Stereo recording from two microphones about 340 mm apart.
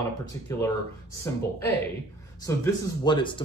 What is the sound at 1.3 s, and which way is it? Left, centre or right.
Speech, centre.